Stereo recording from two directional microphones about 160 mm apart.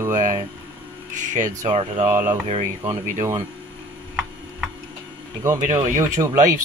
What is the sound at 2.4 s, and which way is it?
Speech, 35° right (ahead or behind).